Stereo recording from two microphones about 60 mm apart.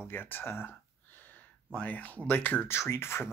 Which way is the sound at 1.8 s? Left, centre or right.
Left.